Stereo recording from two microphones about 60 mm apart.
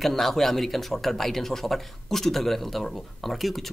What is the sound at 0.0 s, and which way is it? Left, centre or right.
A man's voice, centre.